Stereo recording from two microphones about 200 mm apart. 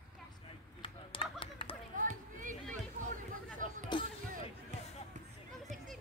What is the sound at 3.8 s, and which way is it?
Music, 25° left (ahead or behind).